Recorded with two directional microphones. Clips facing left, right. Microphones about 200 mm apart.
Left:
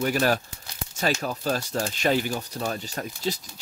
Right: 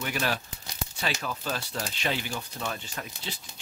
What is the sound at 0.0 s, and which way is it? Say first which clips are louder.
Speech: left 7 dB; 40° left (ahead or behind).